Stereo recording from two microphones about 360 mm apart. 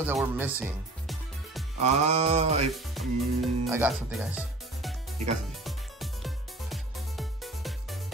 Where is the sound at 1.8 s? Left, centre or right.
Centre.